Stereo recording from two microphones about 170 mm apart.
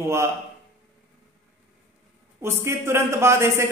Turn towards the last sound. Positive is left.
turn(degrees=-15)  # may be behind; listen again after turning